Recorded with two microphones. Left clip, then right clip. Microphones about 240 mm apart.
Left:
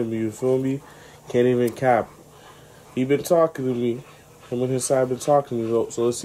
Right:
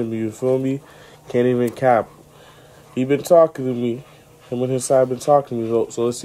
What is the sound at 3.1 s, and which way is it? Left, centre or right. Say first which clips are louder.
Speech: right 5 dB; centre.